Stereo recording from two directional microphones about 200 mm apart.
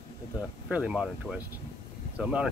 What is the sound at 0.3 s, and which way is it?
Speech, 10° right (ahead or behind).